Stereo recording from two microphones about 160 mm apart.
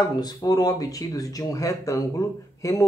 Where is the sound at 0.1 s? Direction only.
25° left (ahead or behind).